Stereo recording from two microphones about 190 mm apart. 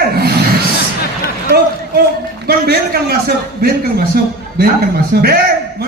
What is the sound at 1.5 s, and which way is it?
A man's voice, 55° right (ahead or behind).